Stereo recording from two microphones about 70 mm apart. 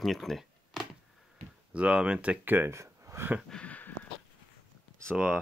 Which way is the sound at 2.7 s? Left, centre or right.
Right.